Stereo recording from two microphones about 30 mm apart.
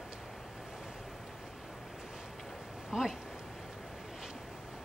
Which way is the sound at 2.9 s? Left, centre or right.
Right.